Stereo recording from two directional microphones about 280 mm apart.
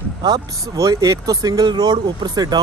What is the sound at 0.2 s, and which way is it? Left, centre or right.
Speech, centre.